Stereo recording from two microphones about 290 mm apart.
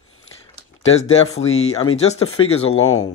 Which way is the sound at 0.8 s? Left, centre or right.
Left.